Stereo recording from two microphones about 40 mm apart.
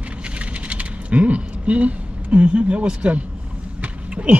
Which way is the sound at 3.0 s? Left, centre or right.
Right.